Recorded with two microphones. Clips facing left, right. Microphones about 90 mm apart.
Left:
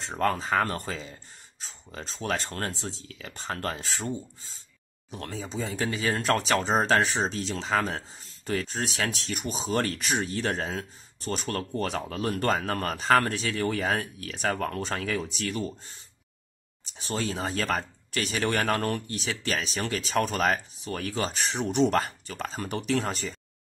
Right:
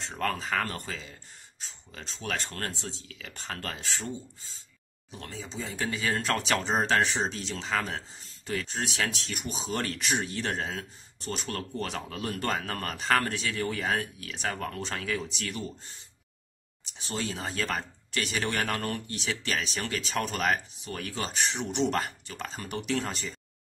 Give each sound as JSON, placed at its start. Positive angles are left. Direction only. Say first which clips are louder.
{"t": 0.0, "sound": "speech", "louder": "left 4 dB", "side_deg": 35}
{"t": 17.0, "sound": "speech", "louder": "left 4 dB", "side_deg": 40}